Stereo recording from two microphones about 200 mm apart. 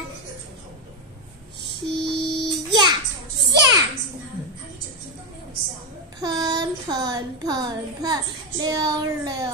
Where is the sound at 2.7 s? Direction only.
20° right (ahead or behind).